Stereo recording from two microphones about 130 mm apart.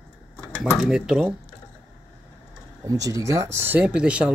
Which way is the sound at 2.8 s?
25° right (ahead or behind).